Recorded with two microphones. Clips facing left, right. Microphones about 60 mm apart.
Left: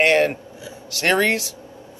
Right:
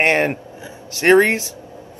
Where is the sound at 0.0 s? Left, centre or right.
Right.